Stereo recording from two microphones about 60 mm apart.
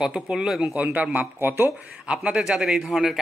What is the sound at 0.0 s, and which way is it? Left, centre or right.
Speech, centre.